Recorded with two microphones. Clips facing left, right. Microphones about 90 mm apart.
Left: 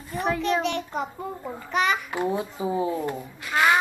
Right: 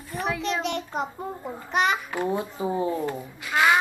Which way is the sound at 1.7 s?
20° right (ahead or behind).